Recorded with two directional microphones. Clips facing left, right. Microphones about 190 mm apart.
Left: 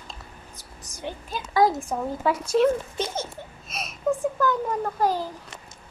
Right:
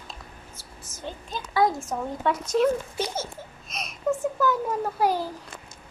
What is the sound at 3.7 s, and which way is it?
A child's voice, centre (ahead or behind).